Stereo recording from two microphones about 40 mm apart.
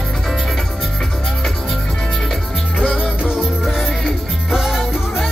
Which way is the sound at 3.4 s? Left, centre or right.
Centre.